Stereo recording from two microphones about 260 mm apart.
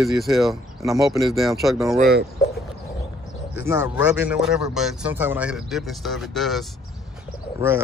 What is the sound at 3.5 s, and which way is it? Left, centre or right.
Speech, centre.